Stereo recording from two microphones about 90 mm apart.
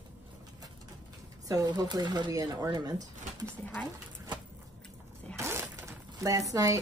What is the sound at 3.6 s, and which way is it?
Babbling, 15° left (ahead or behind).